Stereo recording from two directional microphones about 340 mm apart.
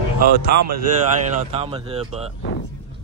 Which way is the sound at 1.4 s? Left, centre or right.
Centre.